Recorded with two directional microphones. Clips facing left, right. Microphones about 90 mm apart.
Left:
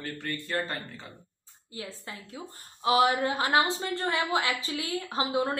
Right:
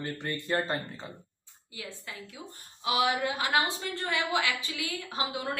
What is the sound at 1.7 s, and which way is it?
A woman's voice, 30° left (ahead or behind).